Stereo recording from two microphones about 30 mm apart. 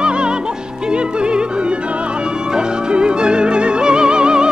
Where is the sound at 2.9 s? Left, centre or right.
Right.